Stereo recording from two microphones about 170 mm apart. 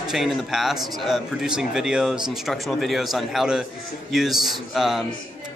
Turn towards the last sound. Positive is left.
turn(degrees=0)  # may be behind; listen again after turning